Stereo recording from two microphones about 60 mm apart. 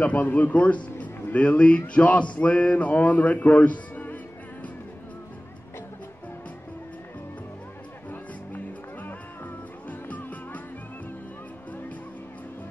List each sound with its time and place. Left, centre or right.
0.0 s speech: left
2.0 s a sound: left
8.1 s music: left